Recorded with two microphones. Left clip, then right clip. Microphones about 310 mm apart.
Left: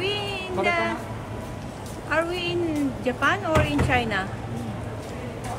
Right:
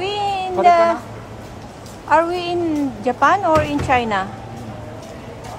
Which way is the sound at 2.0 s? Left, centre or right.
Centre.